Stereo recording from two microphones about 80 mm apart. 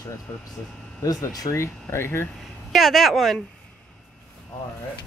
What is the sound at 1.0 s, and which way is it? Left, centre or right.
Speech, left.